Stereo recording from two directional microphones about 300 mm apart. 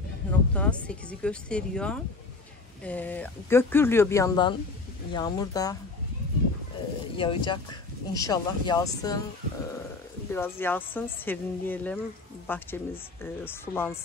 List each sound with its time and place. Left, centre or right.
0.2 s a sound: centre
0.6 s speech: centre
7.2 s speech: centre
10.3 s speech: centre